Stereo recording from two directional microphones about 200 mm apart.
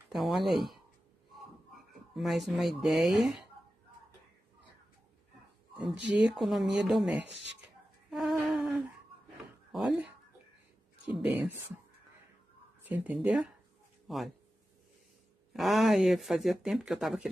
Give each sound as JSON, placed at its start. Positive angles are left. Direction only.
{"t": 0.1, "sound": "a sound", "side_deg": 0}
{"t": 2.1, "sound": "speech", "side_deg": 0}
{"t": 5.9, "sound": "speech", "side_deg": -60}
{"t": 6.2, "sound": "speech", "side_deg": 0}
{"t": 7.2, "sound": "speech", "side_deg": -60}
{"t": 8.1, "sound": "humming", "side_deg": 0}
{"t": 9.7, "sound": "a sound", "side_deg": 0}
{"t": 11.1, "sound": "speech", "side_deg": -10}
{"t": 12.8, "sound": "speech", "side_deg": -5}
{"t": 15.5, "sound": "speech", "side_deg": 0}